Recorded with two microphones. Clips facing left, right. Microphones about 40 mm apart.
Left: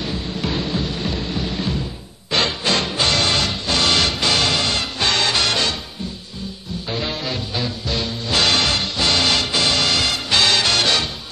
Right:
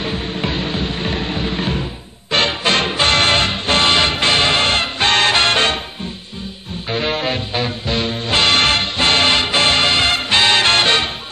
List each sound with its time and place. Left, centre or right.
0.0 s music: right
6.9 s music: right